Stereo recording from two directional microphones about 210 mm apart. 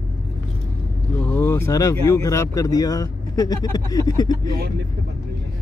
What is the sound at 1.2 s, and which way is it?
Speech, 10° left (ahead or behind).